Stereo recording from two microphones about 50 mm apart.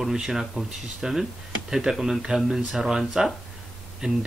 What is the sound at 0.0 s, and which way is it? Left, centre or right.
Speech, centre.